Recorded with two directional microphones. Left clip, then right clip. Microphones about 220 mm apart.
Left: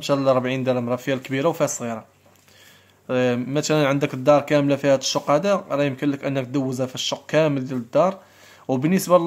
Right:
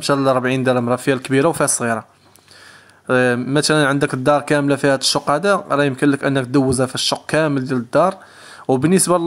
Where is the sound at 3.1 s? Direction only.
25° right (ahead or behind).